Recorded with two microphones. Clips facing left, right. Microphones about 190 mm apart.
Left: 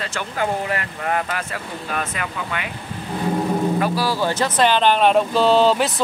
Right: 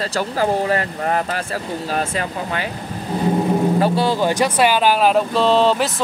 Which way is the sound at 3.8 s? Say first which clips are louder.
Right 4 dB; 25° right (ahead or behind).